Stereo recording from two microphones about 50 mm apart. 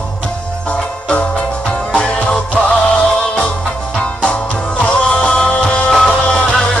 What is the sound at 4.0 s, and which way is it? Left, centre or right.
Music, left.